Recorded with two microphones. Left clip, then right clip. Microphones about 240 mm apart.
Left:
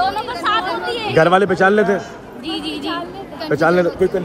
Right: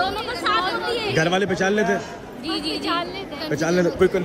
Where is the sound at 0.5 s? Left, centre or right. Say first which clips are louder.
Left 3 dB; left.